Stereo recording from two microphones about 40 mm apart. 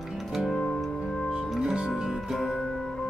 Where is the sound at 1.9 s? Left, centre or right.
Centre.